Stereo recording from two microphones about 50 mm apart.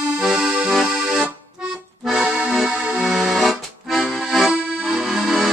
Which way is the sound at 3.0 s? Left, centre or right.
Centre.